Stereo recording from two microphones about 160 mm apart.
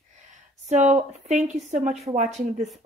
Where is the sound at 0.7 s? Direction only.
45° right (ahead or behind).